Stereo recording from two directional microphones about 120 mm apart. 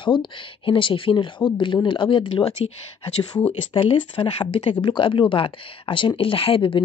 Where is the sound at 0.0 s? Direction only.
40° left (ahead or behind).